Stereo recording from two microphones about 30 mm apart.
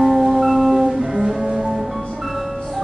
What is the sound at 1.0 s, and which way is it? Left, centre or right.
Music, right.